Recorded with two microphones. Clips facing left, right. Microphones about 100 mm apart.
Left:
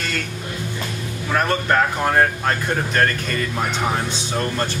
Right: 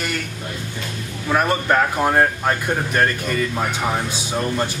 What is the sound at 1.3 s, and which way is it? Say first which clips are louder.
Speech: right 1 dB; 10° right (ahead or behind).